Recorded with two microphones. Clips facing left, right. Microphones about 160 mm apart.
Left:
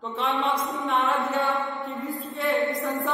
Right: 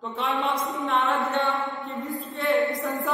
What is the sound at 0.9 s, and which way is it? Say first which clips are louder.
A woman's voice: even; centre (ahead or behind).